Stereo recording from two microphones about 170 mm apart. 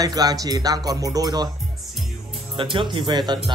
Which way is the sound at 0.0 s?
20° right (ahead or behind).